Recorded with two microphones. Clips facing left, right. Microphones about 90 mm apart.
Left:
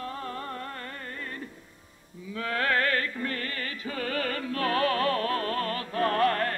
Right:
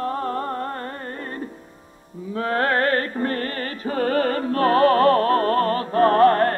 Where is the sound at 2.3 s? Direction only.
35° right (ahead or behind).